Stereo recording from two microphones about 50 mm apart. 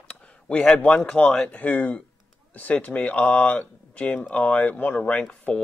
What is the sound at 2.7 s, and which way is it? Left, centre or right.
Speech, left.